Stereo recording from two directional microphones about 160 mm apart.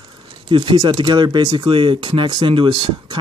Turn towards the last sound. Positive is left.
turn(degrees=-30)  # may be behind; listen again after turning